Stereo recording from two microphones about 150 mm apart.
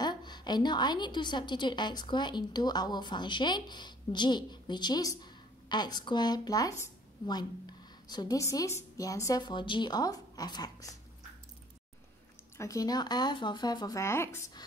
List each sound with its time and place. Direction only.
0.0 s a woman's voice: 30° left (ahead or behind)
12.5 s a woman's voice: 20° left (ahead or behind)